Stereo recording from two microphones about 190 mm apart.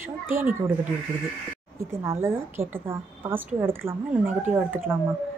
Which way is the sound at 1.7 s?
15° right (ahead or behind).